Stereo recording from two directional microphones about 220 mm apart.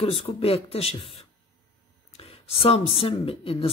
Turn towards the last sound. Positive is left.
turn(degrees=25)  # may be behind; listen again after turning